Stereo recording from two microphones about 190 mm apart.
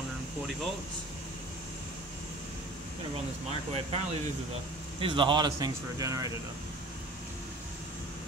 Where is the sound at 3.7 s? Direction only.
30° right (ahead or behind).